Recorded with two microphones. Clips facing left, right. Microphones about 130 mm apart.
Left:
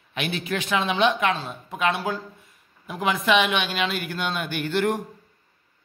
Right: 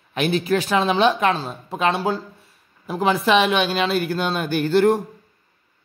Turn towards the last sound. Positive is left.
turn(degrees=-35)  # may be behind; listen again after turning